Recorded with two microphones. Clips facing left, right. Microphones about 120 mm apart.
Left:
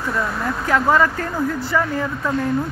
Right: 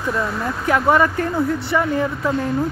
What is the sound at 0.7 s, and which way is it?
Speech, 20° right (ahead or behind).